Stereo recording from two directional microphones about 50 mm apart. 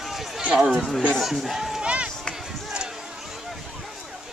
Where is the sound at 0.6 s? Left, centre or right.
Centre.